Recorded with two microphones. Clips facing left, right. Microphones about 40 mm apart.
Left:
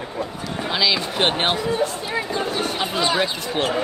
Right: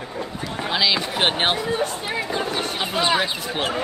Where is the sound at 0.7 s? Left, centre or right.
Centre.